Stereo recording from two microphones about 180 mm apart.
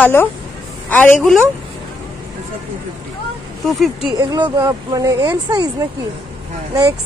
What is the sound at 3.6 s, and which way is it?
Speech, centre (ahead or behind).